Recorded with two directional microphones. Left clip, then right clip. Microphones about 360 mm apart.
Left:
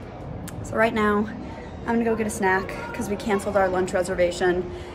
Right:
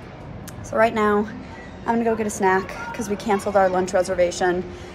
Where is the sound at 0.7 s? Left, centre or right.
Centre.